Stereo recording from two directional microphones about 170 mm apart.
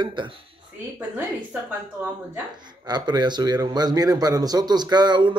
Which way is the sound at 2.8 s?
25° right (ahead or behind).